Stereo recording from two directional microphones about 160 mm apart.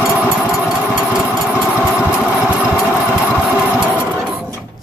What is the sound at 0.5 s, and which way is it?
Engine, centre (ahead or behind).